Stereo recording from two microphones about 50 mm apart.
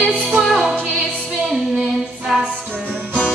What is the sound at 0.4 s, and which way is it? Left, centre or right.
Music, centre.